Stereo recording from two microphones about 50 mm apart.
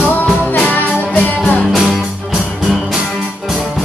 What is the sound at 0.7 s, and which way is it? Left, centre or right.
Music, left.